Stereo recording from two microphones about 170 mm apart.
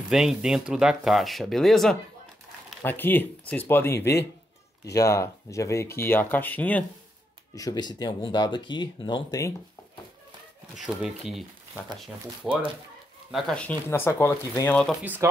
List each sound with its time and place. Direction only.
0.1 s speech: 5° right (ahead or behind)
2.8 s speech: 10° left (ahead or behind)
4.0 s speech: 75° left (ahead or behind)
4.9 s speech: 20° left (ahead or behind)
7.5 s speech: 25° left (ahead or behind)
10.8 s speech: centre (ahead or behind)
12.4 s speech: 5° right (ahead or behind)
14.9 s speech: 10° right (ahead or behind)